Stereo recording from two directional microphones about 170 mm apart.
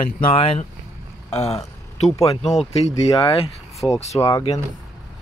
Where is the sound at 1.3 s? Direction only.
20° left (ahead or behind).